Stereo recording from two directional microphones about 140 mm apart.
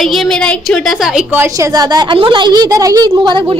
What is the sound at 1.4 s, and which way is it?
A woman's voice, 25° right (ahead or behind).